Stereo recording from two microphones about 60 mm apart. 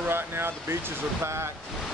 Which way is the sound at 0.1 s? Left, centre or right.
Right.